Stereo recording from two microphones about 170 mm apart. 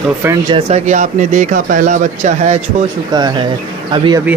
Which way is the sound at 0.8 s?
45° right (ahead or behind).